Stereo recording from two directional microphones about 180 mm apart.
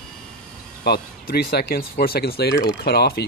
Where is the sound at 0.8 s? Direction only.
60° left (ahead or behind).